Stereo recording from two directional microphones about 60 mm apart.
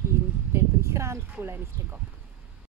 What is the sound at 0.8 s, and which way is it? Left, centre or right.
Speech, right.